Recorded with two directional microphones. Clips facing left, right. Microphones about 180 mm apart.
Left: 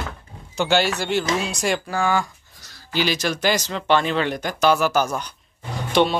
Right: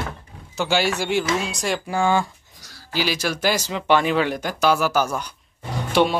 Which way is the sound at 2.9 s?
5° right (ahead or behind).